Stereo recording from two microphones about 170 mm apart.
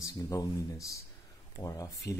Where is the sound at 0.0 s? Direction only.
20° left (ahead or behind).